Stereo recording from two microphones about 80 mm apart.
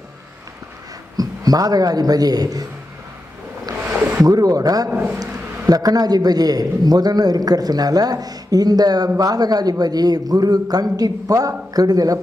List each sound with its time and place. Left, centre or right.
1.1 s a man's voice: right
4.2 s a man's voice: right
4.8 s a man's voice: right
5.7 s a man's voice: right